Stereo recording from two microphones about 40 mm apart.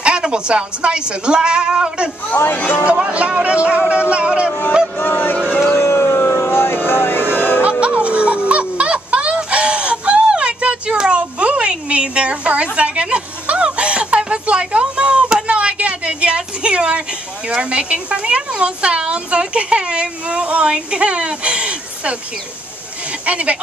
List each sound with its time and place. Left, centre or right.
0.0 s a woman's voice: right
2.4 s speech: left
2.8 s a woman's voice: right
4.9 s speech: left
5.8 s a sound: left
6.9 s vehicle: left
7.8 s music: right
11.0 s a sound: right
17.5 s a woman's voice: right
23.2 s speech: right